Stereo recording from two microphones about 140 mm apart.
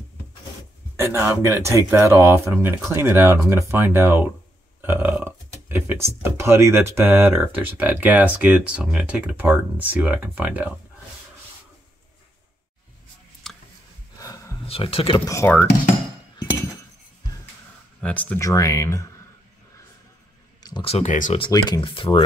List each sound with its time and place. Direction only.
0.9 s speech: 20° right (ahead or behind)
13.4 s a sound: centre (ahead or behind)
14.1 s snort: 25° left (ahead or behind)
14.7 s speech: 40° left (ahead or behind)
15.2 s speech: 15° left (ahead or behind)
18.0 s speech: 10° left (ahead or behind)
18.4 s speech: 25° left (ahead or behind)
20.6 s a sound: 30° left (ahead or behind)
20.9 s speech: 60° left (ahead or behind)
21.5 s speech: 30° left (ahead or behind)